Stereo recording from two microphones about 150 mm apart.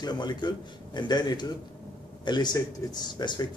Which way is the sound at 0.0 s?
30° left (ahead or behind).